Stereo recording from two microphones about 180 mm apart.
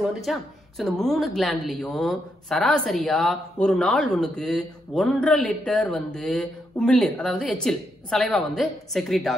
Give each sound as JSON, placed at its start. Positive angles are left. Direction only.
{"t": 0.0, "sound": "speech", "side_deg": 0}